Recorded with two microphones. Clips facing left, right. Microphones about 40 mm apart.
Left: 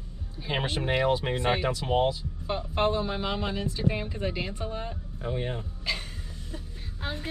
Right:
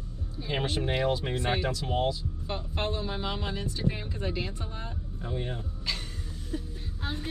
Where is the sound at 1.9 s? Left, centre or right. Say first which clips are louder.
Left 4 dB; left.